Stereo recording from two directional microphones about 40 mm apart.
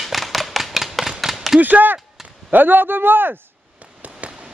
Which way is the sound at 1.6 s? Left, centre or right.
Right.